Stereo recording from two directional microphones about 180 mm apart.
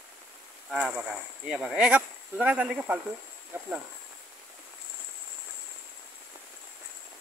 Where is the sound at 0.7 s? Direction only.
5° right (ahead or behind).